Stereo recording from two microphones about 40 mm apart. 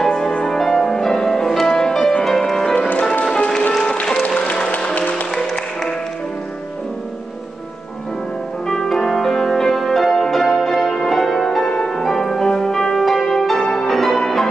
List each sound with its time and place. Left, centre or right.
0.5 s music: centre
3.0 s music: left
3.7 s music: centre; by 5.1 s left
5.1 s music: centre
8.6 s music: centre
11.6 s music: centre